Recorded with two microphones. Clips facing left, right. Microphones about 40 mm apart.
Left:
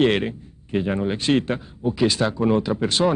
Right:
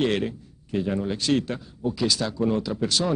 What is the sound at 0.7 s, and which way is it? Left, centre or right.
Speech, left.